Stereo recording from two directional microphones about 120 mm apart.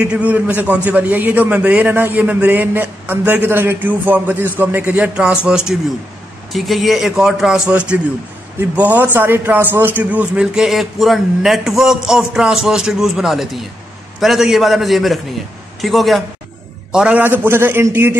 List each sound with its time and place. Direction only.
0.0 s a man's voice: 10° right (ahead or behind)
16.9 s a man's voice: 10° right (ahead or behind)